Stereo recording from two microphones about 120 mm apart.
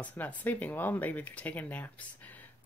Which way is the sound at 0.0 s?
15° left (ahead or behind).